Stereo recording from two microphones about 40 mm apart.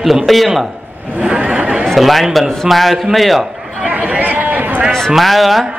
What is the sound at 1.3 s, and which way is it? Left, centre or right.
Chatter, right.